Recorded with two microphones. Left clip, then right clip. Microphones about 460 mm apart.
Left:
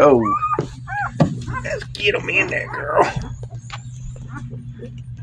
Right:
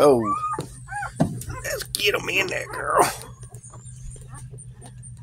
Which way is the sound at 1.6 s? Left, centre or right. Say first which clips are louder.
Left 3 dB; right.